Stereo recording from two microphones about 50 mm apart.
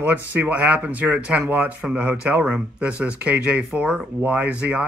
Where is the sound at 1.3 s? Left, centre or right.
Right.